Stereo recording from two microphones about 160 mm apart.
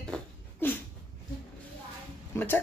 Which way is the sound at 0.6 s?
10° left (ahead or behind).